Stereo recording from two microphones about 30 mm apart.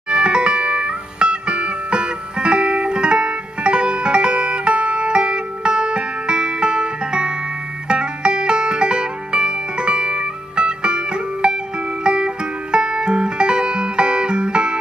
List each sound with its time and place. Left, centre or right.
0.1 s music: right